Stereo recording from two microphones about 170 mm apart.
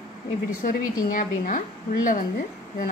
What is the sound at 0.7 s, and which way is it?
Speech, 50° left (ahead or behind).